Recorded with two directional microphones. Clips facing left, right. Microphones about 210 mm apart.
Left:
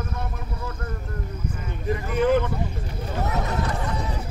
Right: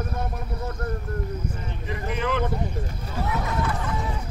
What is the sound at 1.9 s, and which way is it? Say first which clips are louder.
Speech: left 7 dB; 45° left (ahead or behind).